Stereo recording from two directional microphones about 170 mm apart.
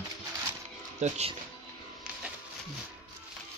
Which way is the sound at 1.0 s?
40° right (ahead or behind).